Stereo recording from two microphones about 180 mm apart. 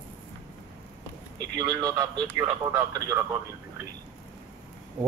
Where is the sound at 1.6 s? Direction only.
20° right (ahead or behind).